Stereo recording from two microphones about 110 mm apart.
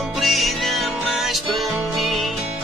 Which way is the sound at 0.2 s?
Centre (ahead or behind).